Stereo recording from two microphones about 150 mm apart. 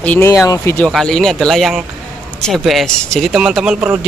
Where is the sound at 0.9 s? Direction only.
Centre (ahead or behind).